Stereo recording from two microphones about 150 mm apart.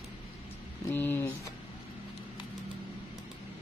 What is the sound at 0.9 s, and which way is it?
Speech, 15° left (ahead or behind).